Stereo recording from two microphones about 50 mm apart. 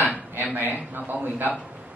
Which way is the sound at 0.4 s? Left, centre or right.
Right.